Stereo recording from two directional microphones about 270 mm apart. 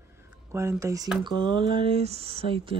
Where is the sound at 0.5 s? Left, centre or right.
Centre.